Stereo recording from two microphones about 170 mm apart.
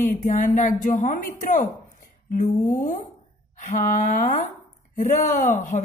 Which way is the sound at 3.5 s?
50° left (ahead or behind).